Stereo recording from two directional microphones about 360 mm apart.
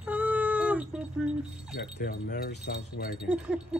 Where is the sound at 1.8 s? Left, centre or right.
Left.